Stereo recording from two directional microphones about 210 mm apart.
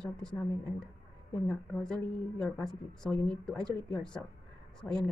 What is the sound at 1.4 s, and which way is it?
A woman's voice, 5° left (ahead or behind).